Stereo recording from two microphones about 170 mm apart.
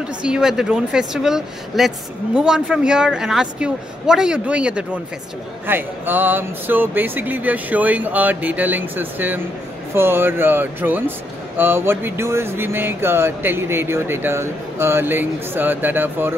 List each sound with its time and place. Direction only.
0.0 s a man's voice: 5° right (ahead or behind)